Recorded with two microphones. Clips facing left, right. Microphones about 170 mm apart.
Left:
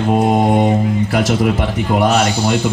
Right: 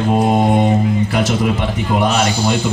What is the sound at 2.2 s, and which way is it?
Speech, 65° left (ahead or behind).